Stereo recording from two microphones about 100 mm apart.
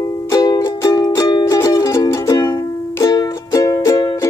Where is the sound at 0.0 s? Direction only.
35° left (ahead or behind).